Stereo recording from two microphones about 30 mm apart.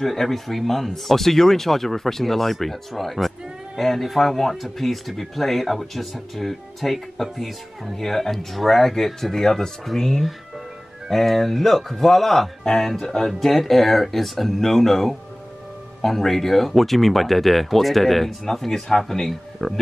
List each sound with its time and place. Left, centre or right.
0.0 s speech: centre
11.1 s speech: centre
13.3 s speech: centre